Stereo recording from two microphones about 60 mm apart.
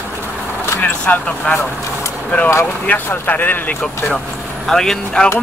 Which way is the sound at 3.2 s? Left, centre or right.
Left.